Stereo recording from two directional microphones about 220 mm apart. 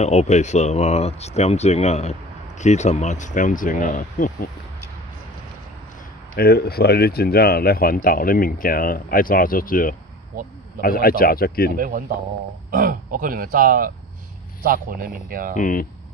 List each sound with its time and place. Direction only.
0.0 s speech: 30° left (ahead or behind)
6.3 s speech: 45° left (ahead or behind)
12.7 s speech: 40° right (ahead or behind)
15.5 s speech: 40° left (ahead or behind)